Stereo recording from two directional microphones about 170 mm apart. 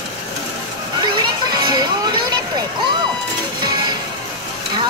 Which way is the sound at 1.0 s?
25° right (ahead or behind).